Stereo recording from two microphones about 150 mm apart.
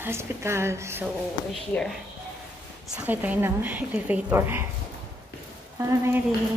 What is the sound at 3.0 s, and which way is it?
A woman's voice, 10° right (ahead or behind).